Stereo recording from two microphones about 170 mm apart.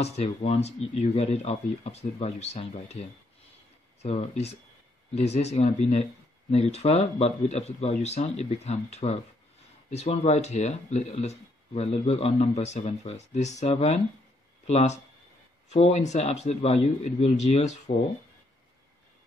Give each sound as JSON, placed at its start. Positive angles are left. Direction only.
{"t": 0.0, "sound": "speech", "side_deg": 40}